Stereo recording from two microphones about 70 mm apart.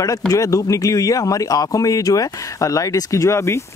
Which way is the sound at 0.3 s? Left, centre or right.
Left.